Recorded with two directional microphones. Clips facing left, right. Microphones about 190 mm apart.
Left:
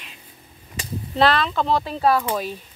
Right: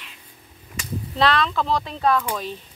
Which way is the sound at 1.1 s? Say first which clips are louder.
Left 2 dB; centre (ahead or behind).